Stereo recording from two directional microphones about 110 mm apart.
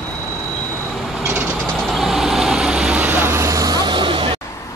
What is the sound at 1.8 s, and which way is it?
Vehicle, centre (ahead or behind).